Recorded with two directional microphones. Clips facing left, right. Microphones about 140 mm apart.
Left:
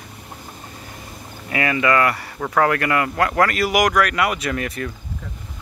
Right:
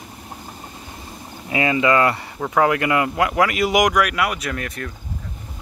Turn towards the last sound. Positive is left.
turn(degrees=0)  # may be behind; listen again after turning